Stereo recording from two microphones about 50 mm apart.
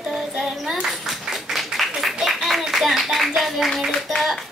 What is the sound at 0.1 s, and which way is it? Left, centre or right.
Clapping, centre.